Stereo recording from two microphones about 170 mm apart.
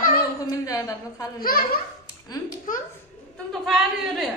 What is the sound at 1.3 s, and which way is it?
Speech, 60° left (ahead or behind).